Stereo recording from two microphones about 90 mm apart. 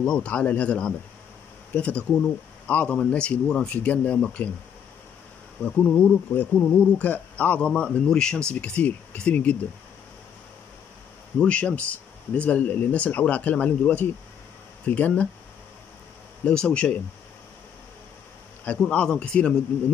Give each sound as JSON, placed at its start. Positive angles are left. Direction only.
{"t": 0.0, "sound": "speech", "side_deg": 15}
{"t": 5.6, "sound": "speech", "side_deg": 15}
{"t": 11.3, "sound": "speech", "side_deg": 15}
{"t": 16.4, "sound": "speech", "side_deg": 10}
{"t": 18.6, "sound": "speech", "side_deg": 15}